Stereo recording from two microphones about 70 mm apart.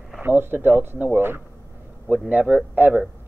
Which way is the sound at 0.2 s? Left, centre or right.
Right.